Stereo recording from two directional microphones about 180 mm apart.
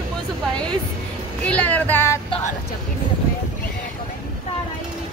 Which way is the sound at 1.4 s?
10° left (ahead or behind).